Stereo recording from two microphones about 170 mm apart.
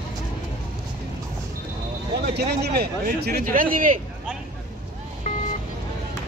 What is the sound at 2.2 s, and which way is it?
Speech, 75° right (ahead or behind).